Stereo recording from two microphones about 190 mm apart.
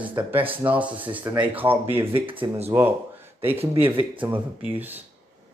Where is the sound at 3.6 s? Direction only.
30° right (ahead or behind).